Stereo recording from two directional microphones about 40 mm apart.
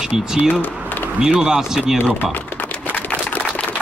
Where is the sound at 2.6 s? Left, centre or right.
Left.